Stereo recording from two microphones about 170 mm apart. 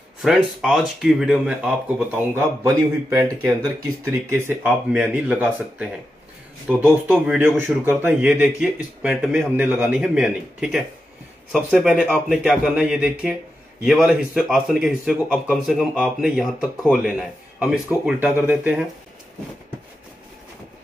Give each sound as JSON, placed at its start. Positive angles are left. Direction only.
{"t": 0.2, "sound": "a man's voice", "side_deg": 0}